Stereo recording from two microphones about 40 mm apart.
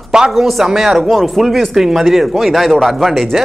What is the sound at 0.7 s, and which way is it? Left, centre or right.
Speech, centre.